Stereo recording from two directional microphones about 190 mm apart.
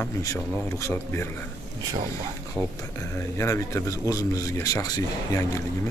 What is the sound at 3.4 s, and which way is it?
Speech, 15° left (ahead or behind).